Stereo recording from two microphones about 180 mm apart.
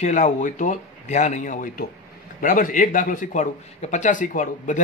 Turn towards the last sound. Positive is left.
turn(degrees=45)  # may be behind; listen again after turning